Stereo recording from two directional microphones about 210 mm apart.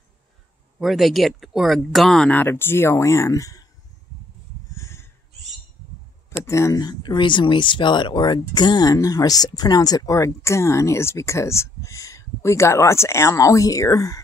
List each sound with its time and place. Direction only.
0.7 s speech: centre (ahead or behind); by 3.6 s 15° left (ahead or behind)
4.7 s crow: 15° left (ahead or behind)
6.3 s speech: 15° left (ahead or behind)